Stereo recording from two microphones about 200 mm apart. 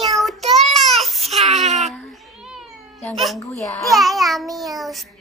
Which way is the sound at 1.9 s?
Centre (ahead or behind).